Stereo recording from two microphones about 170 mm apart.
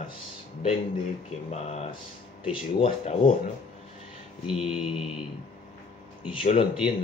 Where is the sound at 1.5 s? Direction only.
40° left (ahead or behind).